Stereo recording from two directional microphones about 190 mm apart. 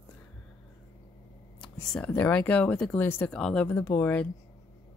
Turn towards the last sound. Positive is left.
turn(degrees=10)  # may be behind; listen again after turning